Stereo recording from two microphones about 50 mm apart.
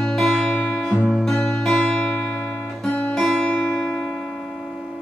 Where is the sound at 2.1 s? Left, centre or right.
Left.